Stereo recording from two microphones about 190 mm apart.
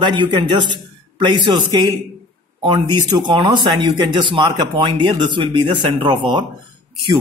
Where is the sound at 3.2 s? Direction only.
25° right (ahead or behind).